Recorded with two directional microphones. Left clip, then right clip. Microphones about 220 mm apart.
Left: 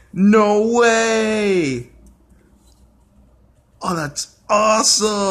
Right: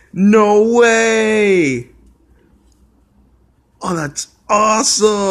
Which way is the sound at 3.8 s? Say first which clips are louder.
Right 2 dB; 10° right (ahead or behind).